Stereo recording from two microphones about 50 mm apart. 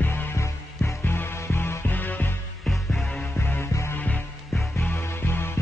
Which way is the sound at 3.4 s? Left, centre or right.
Left.